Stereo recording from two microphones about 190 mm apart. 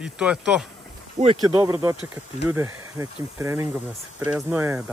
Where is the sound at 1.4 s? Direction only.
15° right (ahead or behind).